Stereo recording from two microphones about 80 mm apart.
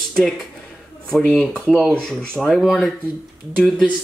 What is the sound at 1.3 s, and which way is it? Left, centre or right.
Speech, centre.